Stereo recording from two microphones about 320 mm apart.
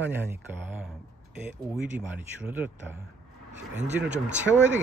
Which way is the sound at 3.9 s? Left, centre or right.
Centre.